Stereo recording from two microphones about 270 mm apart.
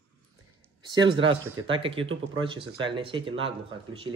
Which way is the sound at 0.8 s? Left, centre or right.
Centre.